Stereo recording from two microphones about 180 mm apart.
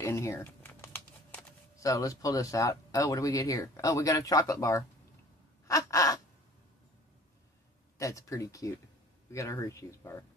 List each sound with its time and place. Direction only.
0.0 s speech: 15° left (ahead or behind)
5.7 s gasp: 20° left (ahead or behind)
8.0 s speech: 15° left (ahead or behind)